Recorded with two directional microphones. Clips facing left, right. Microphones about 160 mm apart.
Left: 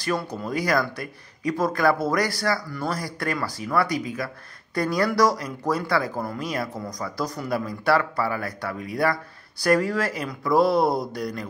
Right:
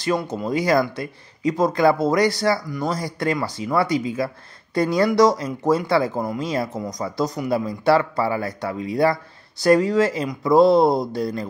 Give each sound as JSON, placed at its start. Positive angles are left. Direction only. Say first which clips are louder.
{"t": 0.0, "sound": "speech", "louder": "right 4 dB", "side_deg": -20}